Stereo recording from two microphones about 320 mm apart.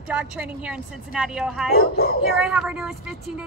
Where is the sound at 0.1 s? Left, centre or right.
Centre.